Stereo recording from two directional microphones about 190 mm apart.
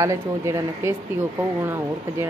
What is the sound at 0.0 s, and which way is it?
Speech, 15° right (ahead or behind).